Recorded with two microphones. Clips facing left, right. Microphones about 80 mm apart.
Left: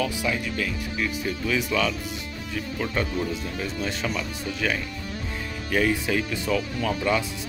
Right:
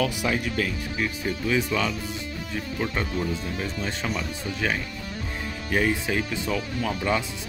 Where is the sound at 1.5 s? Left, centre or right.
Right.